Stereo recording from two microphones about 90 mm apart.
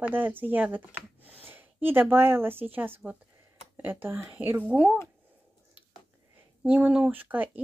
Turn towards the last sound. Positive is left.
turn(degrees=-20)  # may be behind; listen again after turning